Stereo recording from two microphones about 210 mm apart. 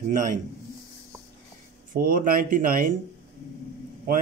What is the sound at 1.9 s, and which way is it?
Speech, 45° right (ahead or behind).